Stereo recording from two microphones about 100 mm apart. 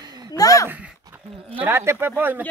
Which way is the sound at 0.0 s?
45° right (ahead or behind).